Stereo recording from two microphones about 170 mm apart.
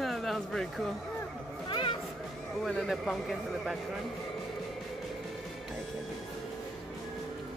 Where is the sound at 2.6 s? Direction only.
Centre (ahead or behind).